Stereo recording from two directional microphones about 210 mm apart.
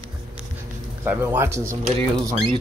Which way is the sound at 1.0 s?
10° right (ahead or behind).